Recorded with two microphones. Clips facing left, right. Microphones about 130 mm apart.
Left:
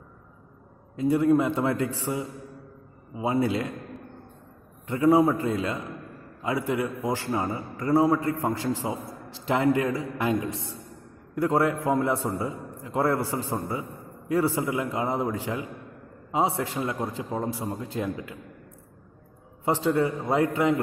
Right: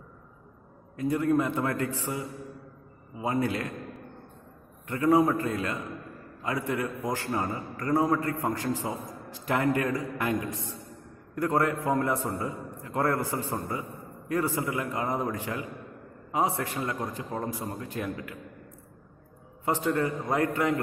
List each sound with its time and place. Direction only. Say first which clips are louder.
0.9 s a man's voice: left 4 dB; 20° left (ahead or behind)
4.8 s a man's voice: left 3 dB; 15° left (ahead or behind)
11.3 s a man's voice: left 3 dB; 15° left (ahead or behind)
17.2 s a man's voice: left 3 dB; 10° left (ahead or behind)
17.5 s a man's voice: left 3 dB; 20° left (ahead or behind)
19.6 s a man's voice: left 3 dB; 15° left (ahead or behind)